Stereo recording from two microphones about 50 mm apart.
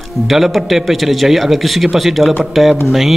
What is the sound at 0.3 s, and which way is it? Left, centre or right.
Speech, centre.